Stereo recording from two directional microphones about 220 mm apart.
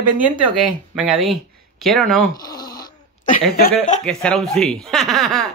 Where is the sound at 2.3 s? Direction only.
15° left (ahead or behind).